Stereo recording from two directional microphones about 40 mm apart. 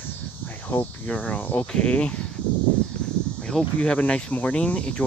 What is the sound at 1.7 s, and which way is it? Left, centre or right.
Speech, left.